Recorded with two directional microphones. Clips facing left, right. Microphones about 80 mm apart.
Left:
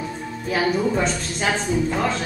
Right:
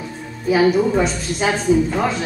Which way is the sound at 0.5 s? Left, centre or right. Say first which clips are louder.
Right 6 dB; centre.